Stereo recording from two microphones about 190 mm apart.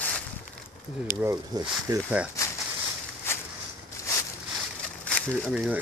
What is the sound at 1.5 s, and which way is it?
Speech, 20° right (ahead or behind).